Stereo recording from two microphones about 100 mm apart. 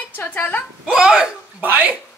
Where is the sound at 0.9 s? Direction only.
10° right (ahead or behind).